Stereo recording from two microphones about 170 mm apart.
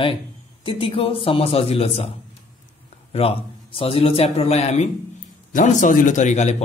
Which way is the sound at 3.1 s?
35° left (ahead or behind).